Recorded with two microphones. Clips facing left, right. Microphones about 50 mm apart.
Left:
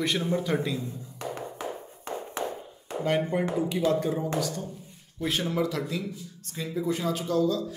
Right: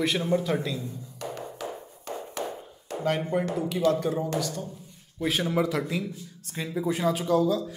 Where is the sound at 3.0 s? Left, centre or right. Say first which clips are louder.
Even; centre.